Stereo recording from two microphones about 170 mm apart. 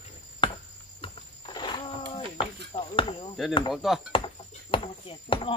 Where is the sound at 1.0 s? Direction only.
30° left (ahead or behind).